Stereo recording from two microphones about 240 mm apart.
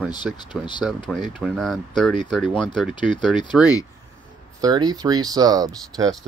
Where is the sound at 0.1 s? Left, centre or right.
Centre.